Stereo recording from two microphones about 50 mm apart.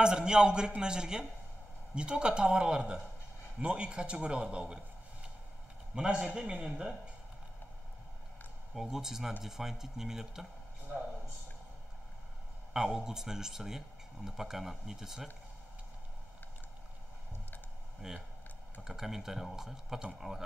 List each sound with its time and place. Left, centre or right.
0.0 s a man's voice: centre
5.9 s a man's voice: centre
8.7 s speech: centre
12.7 s speech: centre
18.0 s a man's voice: centre